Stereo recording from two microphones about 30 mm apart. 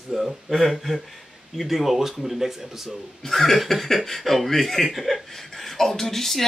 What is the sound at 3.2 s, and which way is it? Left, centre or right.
Speech, centre.